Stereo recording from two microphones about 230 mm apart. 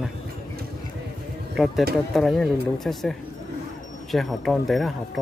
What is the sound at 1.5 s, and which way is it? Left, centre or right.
Speech, centre.